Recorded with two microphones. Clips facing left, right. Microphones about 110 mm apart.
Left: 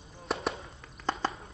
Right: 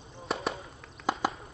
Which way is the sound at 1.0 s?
10° right (ahead or behind).